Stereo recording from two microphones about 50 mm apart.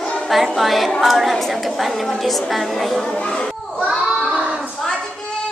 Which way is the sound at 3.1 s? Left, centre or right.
Centre.